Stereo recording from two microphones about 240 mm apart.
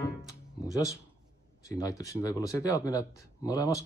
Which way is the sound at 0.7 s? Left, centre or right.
Centre.